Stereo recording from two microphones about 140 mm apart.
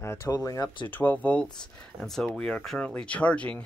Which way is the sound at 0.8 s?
10° left (ahead or behind).